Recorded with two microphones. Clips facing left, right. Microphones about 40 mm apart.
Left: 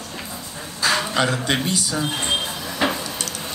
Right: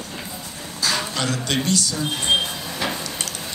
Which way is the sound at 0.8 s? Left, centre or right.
Centre.